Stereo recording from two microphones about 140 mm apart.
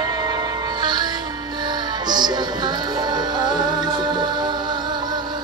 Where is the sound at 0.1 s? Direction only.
30° right (ahead or behind).